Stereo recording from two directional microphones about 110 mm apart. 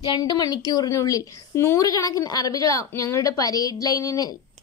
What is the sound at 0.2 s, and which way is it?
A woman's voice, 35° left (ahead or behind).